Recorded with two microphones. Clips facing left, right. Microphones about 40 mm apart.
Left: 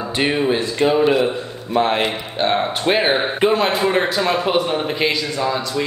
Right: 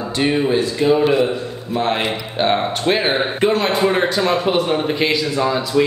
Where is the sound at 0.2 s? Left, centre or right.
Centre.